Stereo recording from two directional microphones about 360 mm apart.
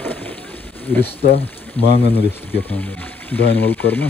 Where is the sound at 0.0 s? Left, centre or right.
Centre.